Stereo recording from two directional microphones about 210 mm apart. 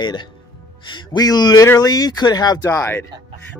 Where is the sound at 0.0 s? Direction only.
20° left (ahead or behind).